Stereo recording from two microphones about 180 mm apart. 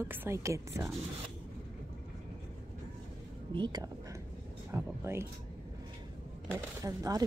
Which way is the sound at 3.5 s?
25° right (ahead or behind).